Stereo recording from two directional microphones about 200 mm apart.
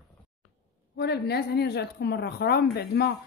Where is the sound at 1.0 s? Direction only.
55° left (ahead or behind).